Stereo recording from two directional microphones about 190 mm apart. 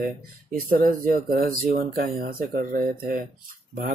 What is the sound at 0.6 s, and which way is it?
Speech, 50° right (ahead or behind).